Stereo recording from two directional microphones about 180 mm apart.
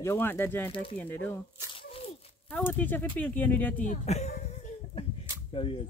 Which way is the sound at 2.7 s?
10° left (ahead or behind).